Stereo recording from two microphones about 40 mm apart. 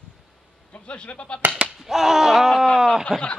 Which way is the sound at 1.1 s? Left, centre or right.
Left.